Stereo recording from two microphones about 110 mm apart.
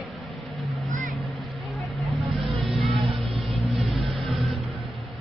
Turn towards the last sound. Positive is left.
turn(degrees=0)  # may be behind; listen again after turning